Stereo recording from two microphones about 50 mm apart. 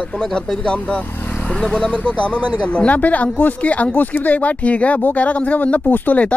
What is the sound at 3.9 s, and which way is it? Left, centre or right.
Speech, left.